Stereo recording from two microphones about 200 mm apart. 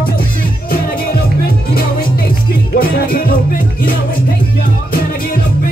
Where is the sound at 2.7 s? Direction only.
45° left (ahead or behind).